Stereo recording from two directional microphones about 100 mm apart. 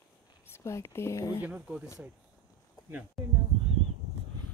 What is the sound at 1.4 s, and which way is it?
Speech, 15° right (ahead or behind).